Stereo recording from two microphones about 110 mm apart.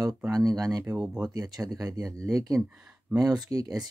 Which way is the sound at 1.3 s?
35° right (ahead or behind).